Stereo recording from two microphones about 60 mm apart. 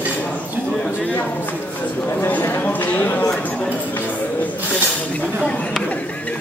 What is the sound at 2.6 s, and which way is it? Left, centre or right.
Speech, left.